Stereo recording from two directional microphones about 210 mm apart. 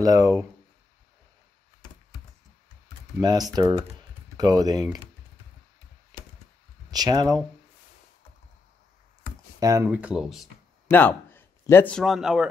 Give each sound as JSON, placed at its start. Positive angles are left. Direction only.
{"t": 0.0, "sound": "speech", "side_deg": -15}
{"t": 3.2, "sound": "speech", "side_deg": -20}
{"t": 6.9, "sound": "speech", "side_deg": -20}
{"t": 9.6, "sound": "speech", "side_deg": -15}
{"t": 9.8, "sound": "speech", "side_deg": -5}
{"t": 10.9, "sound": "a man's voice", "side_deg": 10}